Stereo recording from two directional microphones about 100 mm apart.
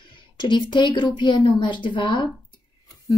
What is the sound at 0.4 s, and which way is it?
Speech, 50° left (ahead or behind).